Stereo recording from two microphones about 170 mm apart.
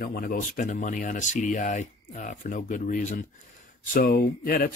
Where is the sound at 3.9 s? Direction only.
60° left (ahead or behind).